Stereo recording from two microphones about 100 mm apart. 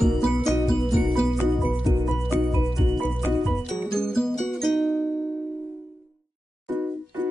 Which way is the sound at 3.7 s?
Centre (ahead or behind).